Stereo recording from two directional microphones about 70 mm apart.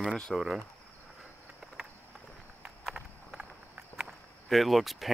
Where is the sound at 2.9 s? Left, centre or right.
Centre.